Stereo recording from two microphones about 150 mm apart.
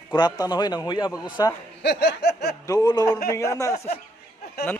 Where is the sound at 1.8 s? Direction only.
90° left.